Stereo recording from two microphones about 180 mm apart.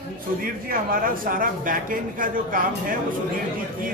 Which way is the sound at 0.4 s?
50° right (ahead or behind).